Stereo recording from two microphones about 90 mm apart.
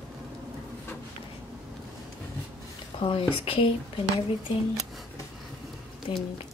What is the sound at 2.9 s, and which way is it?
Speech, 80° left.